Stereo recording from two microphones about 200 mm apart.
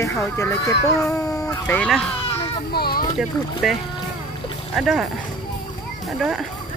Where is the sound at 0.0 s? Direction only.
15° left (ahead or behind).